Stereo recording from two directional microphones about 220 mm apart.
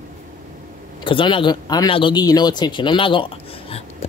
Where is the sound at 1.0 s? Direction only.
25° left (ahead or behind).